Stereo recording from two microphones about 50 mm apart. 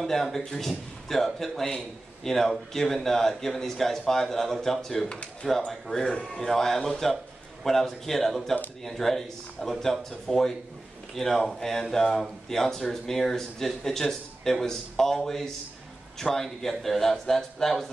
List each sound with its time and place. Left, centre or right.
0.0 s speech: centre
5.1 s speech: centre
5.7 s speech: centre